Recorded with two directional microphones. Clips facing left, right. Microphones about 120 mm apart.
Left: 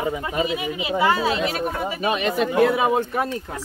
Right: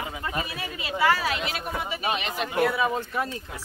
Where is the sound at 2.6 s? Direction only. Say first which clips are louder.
Left 4 dB; 90° left.